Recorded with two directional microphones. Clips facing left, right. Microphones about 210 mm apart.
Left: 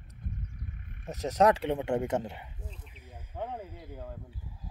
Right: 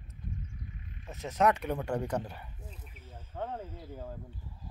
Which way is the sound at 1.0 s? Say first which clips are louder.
Left 4 dB; 40° left (ahead or behind).